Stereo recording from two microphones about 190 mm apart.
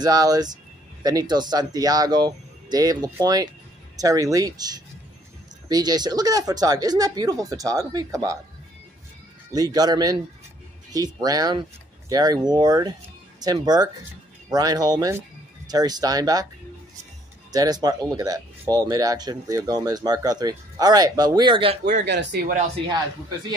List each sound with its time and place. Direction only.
0.0 s speech: 20° right (ahead or behind)
9.5 s speech: 20° right (ahead or behind)
17.5 s speech: 20° right (ahead or behind)
22.0 s speech: 65° right (ahead or behind)